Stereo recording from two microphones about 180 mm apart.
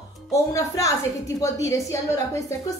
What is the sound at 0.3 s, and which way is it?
A woman's voice, 15° left (ahead or behind).